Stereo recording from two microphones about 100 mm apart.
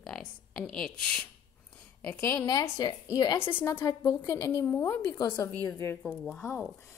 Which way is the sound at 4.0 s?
35° left (ahead or behind).